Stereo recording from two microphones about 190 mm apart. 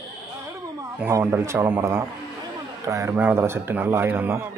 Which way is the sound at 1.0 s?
10° right (ahead or behind).